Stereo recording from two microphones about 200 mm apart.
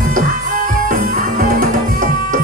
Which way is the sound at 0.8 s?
45° right (ahead or behind).